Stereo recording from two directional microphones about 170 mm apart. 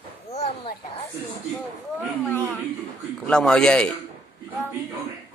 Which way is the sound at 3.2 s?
5° left (ahead or behind).